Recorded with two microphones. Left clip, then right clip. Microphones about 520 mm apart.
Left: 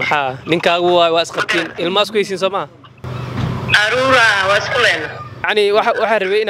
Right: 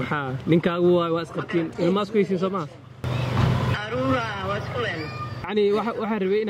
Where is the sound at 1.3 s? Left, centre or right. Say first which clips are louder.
Left 10 dB; centre.